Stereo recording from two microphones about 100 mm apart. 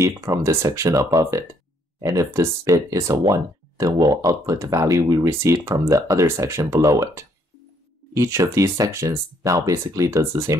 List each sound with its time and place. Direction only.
0.0 s speech: 30° right (ahead or behind)